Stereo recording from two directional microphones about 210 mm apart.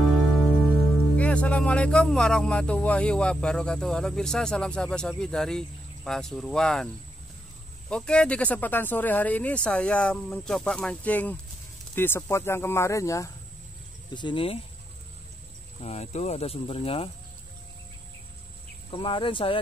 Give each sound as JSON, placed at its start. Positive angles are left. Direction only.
{"t": 1.1, "sound": "speech", "side_deg": 5}
{"t": 7.9, "sound": "speech", "side_deg": 5}
{"t": 15.8, "sound": "speech", "side_deg": 30}
{"t": 18.9, "sound": "speech", "side_deg": 25}